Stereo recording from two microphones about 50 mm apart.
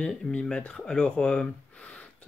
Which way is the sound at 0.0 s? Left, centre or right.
Left.